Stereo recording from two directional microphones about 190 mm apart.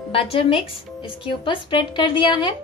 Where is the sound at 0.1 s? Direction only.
30° left (ahead or behind).